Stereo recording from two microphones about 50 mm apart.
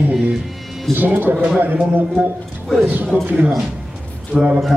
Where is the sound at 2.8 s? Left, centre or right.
Right.